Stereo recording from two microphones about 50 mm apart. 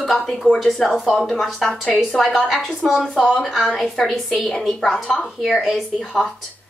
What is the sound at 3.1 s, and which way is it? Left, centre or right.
Speech, left.